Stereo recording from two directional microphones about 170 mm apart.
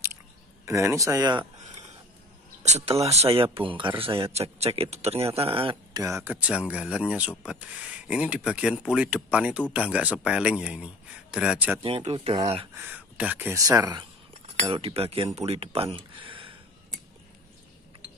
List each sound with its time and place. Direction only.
0.7 s speech: 20° right (ahead or behind)
2.6 s speech: 40° right (ahead or behind)
6.0 s speech: 15° right (ahead or behind)
11.8 s speech: 35° right (ahead or behind)
12.7 s speech: 10° right (ahead or behind)
14.3 s speech: 35° right (ahead or behind)